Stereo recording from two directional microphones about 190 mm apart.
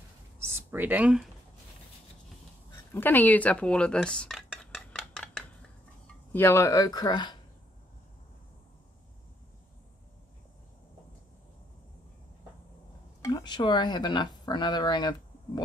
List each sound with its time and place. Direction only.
0.4 s a sound: 10° right (ahead or behind)
2.9 s dishes: 10° left (ahead or behind)
6.3 s speech: 15° left (ahead or behind)
13.2 s speech: 20° left (ahead or behind)